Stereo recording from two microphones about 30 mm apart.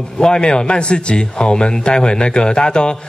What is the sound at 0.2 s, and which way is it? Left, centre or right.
A man's voice, left.